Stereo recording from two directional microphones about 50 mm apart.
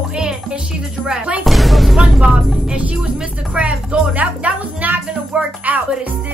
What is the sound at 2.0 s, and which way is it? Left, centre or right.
Speech, centre.